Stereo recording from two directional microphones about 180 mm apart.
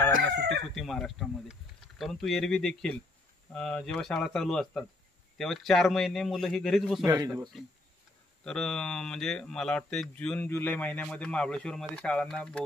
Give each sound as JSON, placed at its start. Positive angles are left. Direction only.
{"t": 0.7, "sound": "speech", "side_deg": 0}
{"t": 7.1, "sound": "speech", "side_deg": -20}
{"t": 8.5, "sound": "speech", "side_deg": 5}